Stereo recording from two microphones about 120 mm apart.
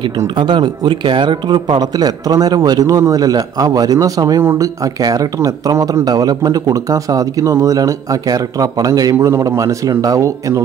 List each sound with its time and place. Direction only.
0.4 s speech: 40° right (ahead or behind)